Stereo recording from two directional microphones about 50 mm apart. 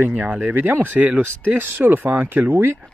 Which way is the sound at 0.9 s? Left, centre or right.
Right.